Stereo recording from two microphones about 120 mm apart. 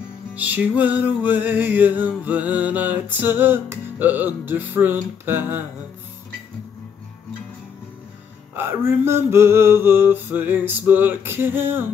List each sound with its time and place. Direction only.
0.3 s music: 10° right (ahead or behind)
8.5 s music: 20° right (ahead or behind)